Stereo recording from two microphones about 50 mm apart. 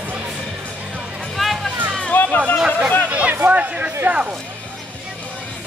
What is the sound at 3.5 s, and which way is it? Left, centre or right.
Speech, right.